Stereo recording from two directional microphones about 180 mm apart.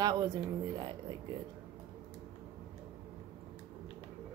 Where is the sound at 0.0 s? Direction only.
20° right (ahead or behind).